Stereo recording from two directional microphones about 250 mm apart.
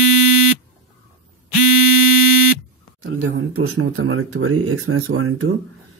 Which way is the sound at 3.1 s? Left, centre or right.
Right.